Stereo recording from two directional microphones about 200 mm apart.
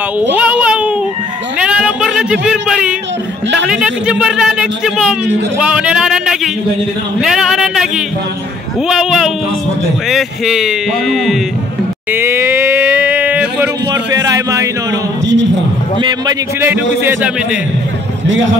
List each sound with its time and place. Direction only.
0.2 s a sound: 5° right (ahead or behind)
1.6 s child singing: 5° right (ahead or behind)
3.6 s speech: 5° right (ahead or behind)
12.1 s a sound: 10° right (ahead or behind)
14.1 s a man's voice: 15° right (ahead or behind)
16.0 s a man's voice: 15° right (ahead or behind)